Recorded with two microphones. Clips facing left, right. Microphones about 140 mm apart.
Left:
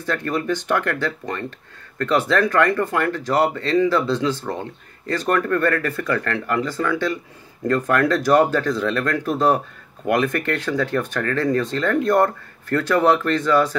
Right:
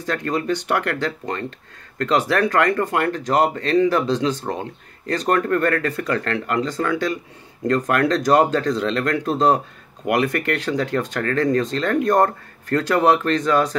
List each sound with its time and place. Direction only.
0.0 s speech: 15° right (ahead or behind)